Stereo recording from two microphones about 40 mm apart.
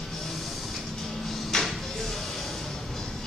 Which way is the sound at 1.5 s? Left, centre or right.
Centre.